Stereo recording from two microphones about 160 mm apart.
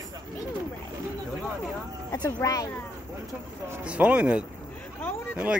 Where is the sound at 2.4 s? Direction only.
20° left (ahead or behind).